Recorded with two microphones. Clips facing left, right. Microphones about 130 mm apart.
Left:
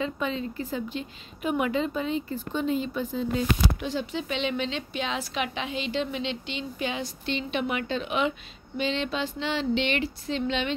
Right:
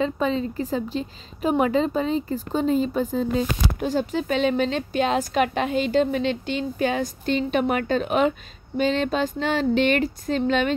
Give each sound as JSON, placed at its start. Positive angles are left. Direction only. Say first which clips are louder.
{"t": 0.0, "sound": "a woman's voice", "louder": "right 6 dB", "side_deg": -35}